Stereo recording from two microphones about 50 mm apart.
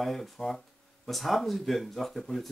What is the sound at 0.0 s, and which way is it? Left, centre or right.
Speech, centre.